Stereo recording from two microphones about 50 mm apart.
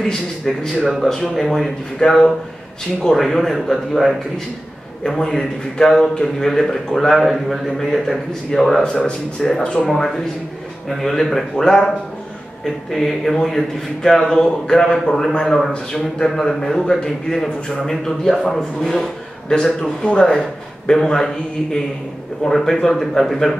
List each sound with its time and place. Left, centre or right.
0.0 s a man's voice: centre
1.0 s a man's voice: centre
8.8 s speech: centre
9.8 s a man's voice: centre
22.5 s a man's voice: centre